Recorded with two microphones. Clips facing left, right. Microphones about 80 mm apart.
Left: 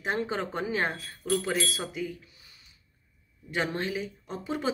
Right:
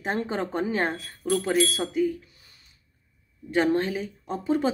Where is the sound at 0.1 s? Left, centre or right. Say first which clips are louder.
Right 2 dB; right.